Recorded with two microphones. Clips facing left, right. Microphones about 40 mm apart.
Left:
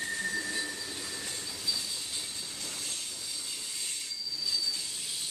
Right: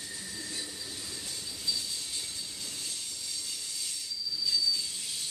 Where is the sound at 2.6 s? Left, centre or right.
Left.